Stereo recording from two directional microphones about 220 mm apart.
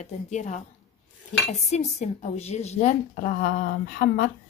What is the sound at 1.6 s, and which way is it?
A woman's voice, 30° left (ahead or behind).